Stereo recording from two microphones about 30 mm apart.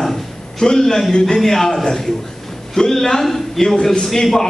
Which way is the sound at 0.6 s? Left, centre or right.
Centre.